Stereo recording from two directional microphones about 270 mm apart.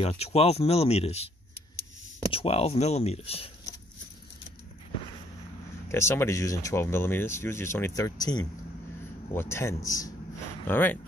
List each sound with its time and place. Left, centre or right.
0.0 s speech: left
2.3 s speech: left
5.9 s speech: centre